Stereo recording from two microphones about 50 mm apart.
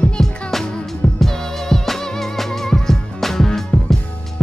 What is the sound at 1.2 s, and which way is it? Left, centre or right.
Music, centre.